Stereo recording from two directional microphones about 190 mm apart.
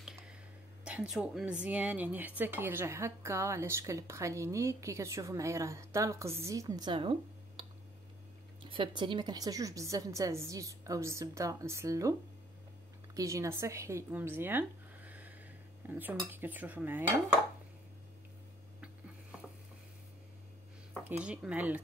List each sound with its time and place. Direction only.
0.0 s a sound: centre (ahead or behind)
0.8 s speech: 5° right (ahead or behind); by 7.6 s 30° right (ahead or behind)
8.6 s a woman's voice: 25° right (ahead or behind); by 17.0 s 10° right (ahead or behind)
21.2 s speech: 5° right (ahead or behind)